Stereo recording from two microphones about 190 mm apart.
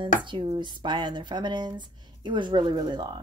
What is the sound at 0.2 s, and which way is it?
Speech, 25° right (ahead or behind).